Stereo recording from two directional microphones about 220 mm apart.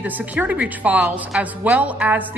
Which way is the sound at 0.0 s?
5° right (ahead or behind).